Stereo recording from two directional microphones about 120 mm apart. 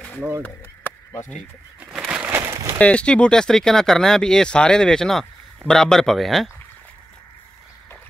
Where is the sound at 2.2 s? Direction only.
20° right (ahead or behind).